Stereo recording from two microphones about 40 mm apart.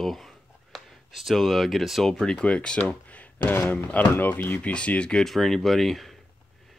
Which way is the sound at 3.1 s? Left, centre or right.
Left.